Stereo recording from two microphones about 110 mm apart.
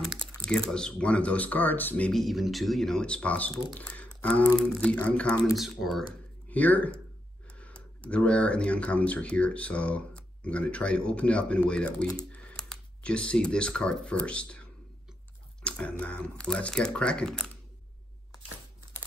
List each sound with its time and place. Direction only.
0.7 s speech: 5° left (ahead or behind)
2.1 s speech: centre (ahead or behind)
5.6 s speech: centre (ahead or behind)
6.5 s speech: 15° left (ahead or behind)
15.6 s speech: 10° left (ahead or behind)